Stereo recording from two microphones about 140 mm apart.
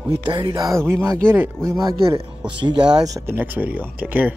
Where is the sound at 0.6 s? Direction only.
20° right (ahead or behind).